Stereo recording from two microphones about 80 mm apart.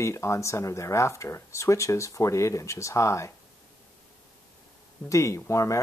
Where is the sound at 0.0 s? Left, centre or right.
Left.